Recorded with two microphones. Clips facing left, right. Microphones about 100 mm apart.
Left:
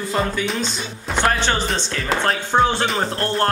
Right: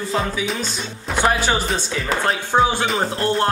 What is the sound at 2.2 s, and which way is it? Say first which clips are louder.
Music: even; 5° right (ahead or behind).